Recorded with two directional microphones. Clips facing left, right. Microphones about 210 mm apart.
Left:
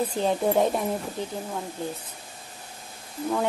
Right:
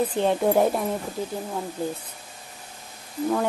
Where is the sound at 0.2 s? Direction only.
Centre (ahead or behind).